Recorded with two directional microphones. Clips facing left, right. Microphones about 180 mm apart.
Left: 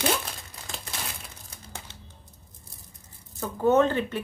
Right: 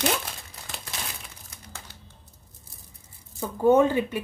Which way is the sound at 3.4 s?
10° right (ahead or behind).